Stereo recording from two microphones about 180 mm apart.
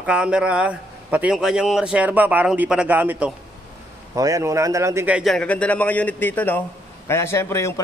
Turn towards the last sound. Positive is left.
turn(degrees=15)  # may be behind; listen again after turning